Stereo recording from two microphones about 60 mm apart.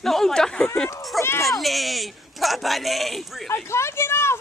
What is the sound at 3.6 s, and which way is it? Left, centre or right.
Speech, left.